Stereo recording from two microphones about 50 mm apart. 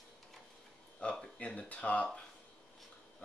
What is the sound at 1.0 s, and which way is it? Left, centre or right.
Speech, left.